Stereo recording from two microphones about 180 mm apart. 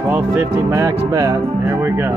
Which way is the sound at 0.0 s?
15° right (ahead or behind).